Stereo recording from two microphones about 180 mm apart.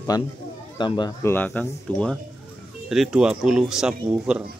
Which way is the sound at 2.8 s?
Centre (ahead or behind).